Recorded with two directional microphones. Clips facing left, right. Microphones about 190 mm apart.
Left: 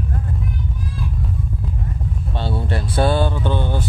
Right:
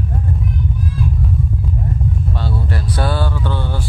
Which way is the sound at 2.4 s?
25° left (ahead or behind).